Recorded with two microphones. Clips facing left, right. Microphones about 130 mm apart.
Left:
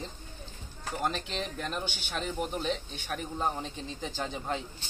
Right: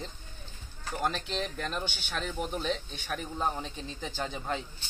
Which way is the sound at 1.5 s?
10° left (ahead or behind).